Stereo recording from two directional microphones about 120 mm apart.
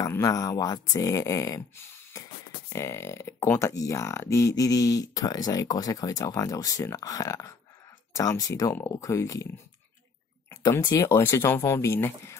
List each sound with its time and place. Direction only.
0.1 s speech: 30° left (ahead or behind)
2.7 s speech: 25° left (ahead or behind)
10.5 s a sound: 30° left (ahead or behind)
10.9 s speech: 20° left (ahead or behind)